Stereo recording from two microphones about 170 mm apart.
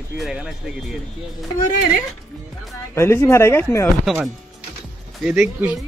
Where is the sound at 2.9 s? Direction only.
15° left (ahead or behind).